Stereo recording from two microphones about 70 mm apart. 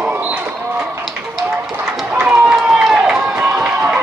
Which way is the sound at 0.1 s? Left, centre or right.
Right.